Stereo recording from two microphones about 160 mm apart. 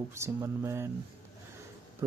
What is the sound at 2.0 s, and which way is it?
Music, 20° right (ahead or behind).